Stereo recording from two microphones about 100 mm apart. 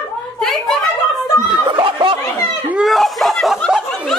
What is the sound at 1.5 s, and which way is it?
Speech, 55° right (ahead or behind).